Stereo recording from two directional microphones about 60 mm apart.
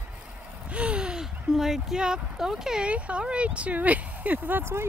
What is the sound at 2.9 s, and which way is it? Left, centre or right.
Speech, right.